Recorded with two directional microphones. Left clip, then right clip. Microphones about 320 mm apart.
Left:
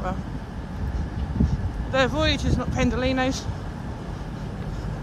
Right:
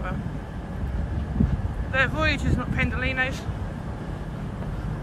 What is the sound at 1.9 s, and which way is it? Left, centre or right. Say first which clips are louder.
Speech: left 1 dB; centre.